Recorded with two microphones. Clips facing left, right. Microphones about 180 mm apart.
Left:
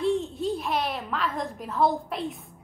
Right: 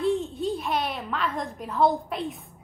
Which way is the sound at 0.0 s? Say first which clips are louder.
Even; centre (ahead or behind).